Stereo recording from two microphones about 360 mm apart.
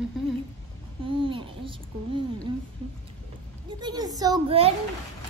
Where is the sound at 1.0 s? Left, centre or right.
Centre.